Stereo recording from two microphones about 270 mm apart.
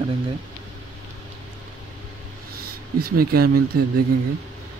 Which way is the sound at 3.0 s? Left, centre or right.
Right.